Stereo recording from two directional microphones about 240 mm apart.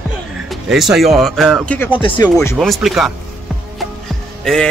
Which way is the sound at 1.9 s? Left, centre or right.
Left.